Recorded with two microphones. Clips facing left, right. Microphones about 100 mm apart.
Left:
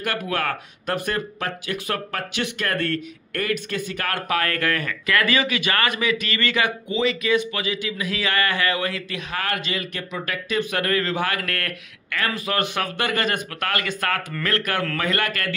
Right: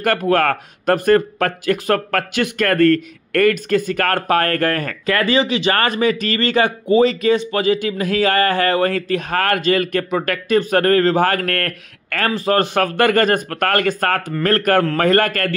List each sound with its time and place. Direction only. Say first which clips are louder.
0.0 s speech: right 9 dB; 45° right (ahead or behind); by 5.8 s 30° right (ahead or behind)
5.8 s speech: right 6 dB; 40° right (ahead or behind)
10.6 s speech: right 8 dB; 40° right (ahead or behind)
12.3 s speech: right 9 dB; 35° right (ahead or behind)